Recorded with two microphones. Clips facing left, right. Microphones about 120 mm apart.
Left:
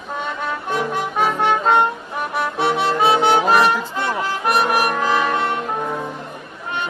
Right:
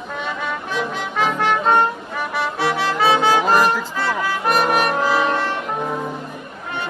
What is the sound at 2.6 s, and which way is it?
Music, 20° left (ahead or behind).